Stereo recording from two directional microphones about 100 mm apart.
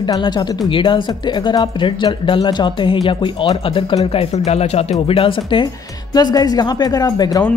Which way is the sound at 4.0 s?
75° left (ahead or behind).